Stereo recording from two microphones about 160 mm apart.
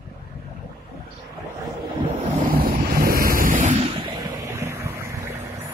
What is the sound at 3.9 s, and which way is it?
Vehicle, 30° right (ahead or behind).